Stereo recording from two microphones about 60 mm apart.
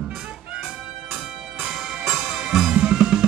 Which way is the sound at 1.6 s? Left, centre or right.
Centre.